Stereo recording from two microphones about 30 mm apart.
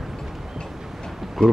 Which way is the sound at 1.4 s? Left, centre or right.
Left.